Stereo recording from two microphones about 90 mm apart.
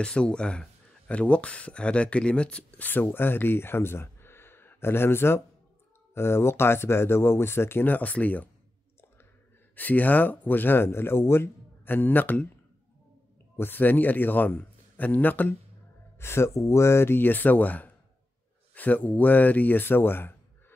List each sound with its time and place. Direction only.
0.0 s speech: 10° left (ahead or behind)
9.8 s speech: 20° left (ahead or behind)
13.6 s speech: 20° left (ahead or behind)